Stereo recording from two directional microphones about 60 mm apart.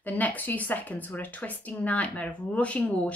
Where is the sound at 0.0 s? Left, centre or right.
Left.